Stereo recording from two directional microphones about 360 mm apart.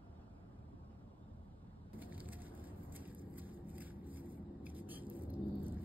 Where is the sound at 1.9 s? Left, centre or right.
Centre.